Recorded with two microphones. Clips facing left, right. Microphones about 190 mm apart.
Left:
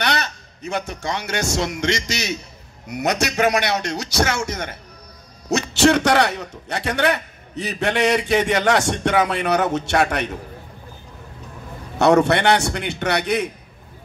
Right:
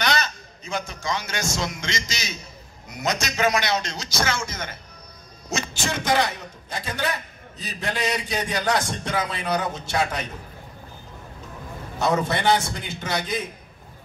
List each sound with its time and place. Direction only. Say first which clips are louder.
0.0 s a man's voice: left 1 dB; 65° left (ahead or behind)
12.0 s a man's voice: left 8 dB; 70° left (ahead or behind)